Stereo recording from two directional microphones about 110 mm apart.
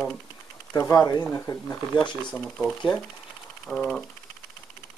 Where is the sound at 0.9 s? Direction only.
30° left (ahead or behind).